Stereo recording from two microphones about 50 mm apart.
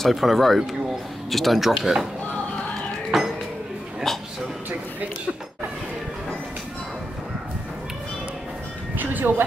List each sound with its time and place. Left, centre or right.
0.0 s speech: centre
3.1 s a sound: centre
8.9 s music: right